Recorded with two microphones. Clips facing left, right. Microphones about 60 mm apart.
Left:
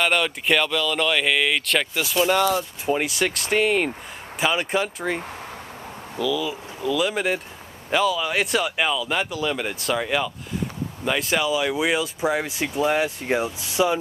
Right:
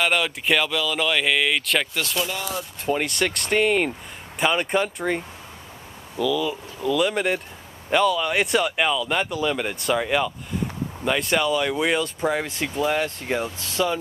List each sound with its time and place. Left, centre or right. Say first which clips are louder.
0.0 s speech: left 1 dB; centre
2.2 s speech: left 10 dB; left
2.8 s speech: right 4 dB; centre